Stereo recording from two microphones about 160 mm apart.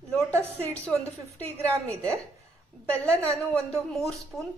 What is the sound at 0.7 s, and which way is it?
Speech, 5° left (ahead or behind).